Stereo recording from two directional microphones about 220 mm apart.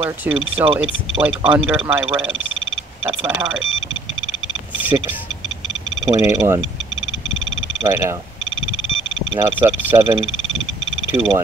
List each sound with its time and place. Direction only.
0.0 s speech: 10° right (ahead or behind)
3.1 s speech: 15° right (ahead or behind)
4.9 s speech: 20° right (ahead or behind)
7.8 s speech: 10° right (ahead or behind)
9.3 s speech: 15° right (ahead or behind)